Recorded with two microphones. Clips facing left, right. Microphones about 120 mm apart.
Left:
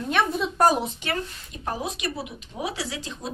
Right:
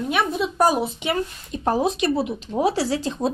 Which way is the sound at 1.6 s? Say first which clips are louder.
Right 9 dB; 35° right (ahead or behind).